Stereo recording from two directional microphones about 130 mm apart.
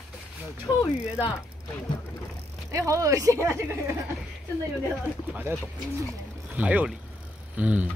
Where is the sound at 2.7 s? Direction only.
25° right (ahead or behind).